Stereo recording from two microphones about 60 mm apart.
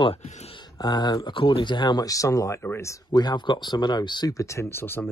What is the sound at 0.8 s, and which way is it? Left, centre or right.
Speech, left.